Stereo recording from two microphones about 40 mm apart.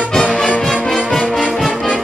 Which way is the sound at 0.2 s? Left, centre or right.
Left.